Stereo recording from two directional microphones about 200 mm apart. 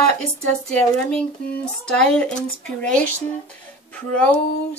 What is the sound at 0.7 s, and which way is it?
Speech, 5° left (ahead or behind).